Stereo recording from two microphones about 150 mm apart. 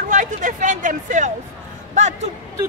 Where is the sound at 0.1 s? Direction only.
55° right (ahead or behind).